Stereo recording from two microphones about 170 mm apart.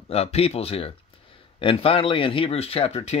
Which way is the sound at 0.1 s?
35° left (ahead or behind).